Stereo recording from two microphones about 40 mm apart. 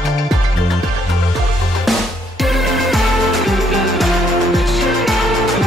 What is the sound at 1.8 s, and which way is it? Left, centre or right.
Music, centre.